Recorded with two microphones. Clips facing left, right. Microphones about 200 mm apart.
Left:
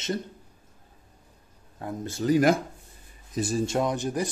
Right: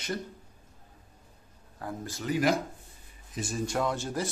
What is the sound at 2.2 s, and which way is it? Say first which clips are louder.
Speech: left 6 dB; 40° left (ahead or behind).